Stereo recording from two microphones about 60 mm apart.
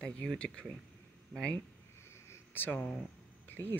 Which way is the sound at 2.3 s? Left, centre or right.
Left.